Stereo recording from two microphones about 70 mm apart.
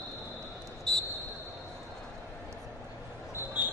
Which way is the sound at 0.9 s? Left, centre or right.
Centre.